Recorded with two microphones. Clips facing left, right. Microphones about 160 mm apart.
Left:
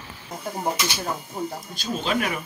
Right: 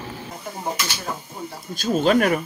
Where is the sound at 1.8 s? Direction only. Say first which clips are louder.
Right 8 dB; 45° right (ahead or behind).